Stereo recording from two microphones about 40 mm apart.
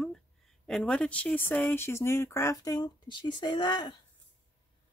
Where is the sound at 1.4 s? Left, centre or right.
Left.